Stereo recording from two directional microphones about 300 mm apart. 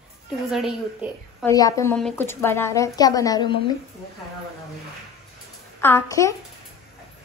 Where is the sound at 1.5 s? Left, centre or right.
Centre.